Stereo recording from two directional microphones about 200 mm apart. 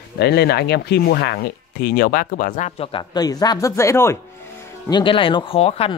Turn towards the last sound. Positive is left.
turn(degrees=30)  # may be behind; listen again after turning